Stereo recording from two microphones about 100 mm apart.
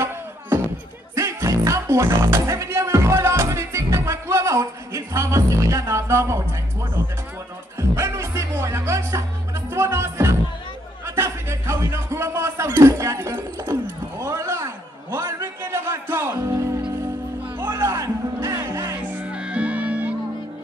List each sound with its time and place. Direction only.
1.1 s music: 30° right (ahead or behind)
7.9 s speech: 25° right (ahead or behind)
9.7 s music: 25° right (ahead or behind)
11.1 s a sound: 25° right (ahead or behind)
17.7 s music: 30° right (ahead or behind)
19.1 s music: 10° right (ahead or behind)